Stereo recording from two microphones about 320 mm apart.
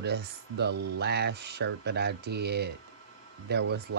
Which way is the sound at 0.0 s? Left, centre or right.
Right.